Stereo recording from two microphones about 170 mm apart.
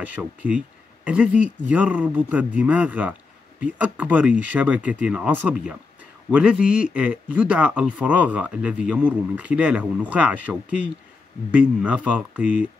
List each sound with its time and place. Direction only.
0.0 s speech: 10° right (ahead or behind)